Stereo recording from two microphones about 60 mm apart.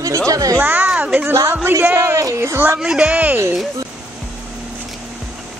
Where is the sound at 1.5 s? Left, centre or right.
Right.